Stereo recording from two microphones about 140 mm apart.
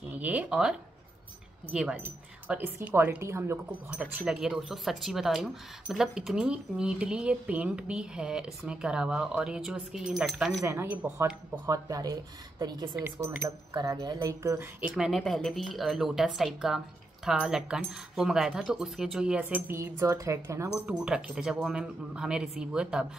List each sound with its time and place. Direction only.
0.1 s speech: 10° right (ahead or behind)
4.2 s speech: centre (ahead or behind)
10.6 s speech: 20° right (ahead or behind)
11.6 s speech: 25° right (ahead or behind)
13.0 s speech: 15° right (ahead or behind)
13.7 s speech: 30° right (ahead or behind)
15.0 s speech: centre (ahead or behind); by 20.7 s 20° right (ahead or behind)
20.8 s speech: 5° right (ahead or behind)